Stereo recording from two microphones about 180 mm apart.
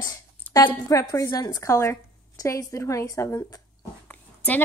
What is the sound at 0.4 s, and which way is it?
A woman's voice, 15° left (ahead or behind).